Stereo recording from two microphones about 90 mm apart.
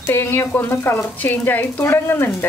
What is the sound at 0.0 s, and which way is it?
Speech, 25° left (ahead or behind).